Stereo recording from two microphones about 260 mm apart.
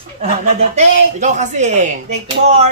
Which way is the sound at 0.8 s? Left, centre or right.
Right.